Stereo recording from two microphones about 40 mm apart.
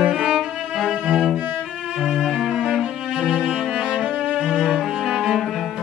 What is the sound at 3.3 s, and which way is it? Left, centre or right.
Cello, right.